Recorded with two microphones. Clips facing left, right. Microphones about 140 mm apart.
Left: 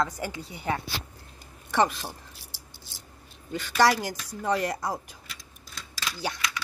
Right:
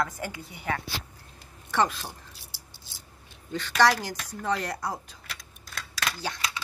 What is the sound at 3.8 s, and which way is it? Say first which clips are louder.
Speech: even; 15° left (ahead or behind).